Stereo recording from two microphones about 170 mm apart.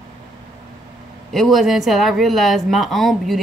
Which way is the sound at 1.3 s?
Centre (ahead or behind).